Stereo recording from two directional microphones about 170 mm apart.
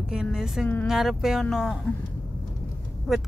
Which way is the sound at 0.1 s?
5° right (ahead or behind).